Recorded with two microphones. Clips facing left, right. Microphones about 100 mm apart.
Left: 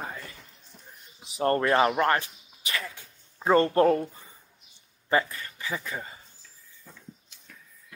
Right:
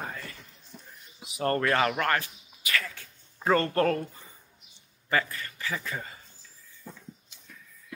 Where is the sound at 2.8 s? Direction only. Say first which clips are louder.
Left 1 dB; 15° left (ahead or behind).